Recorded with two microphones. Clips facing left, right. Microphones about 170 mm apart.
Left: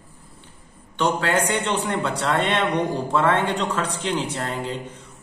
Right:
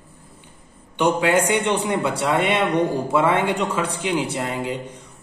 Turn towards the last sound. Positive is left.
turn(degrees=-15)  # may be behind; listen again after turning